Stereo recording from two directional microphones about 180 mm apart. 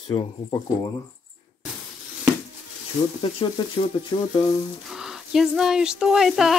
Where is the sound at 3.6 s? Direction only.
20° left (ahead or behind).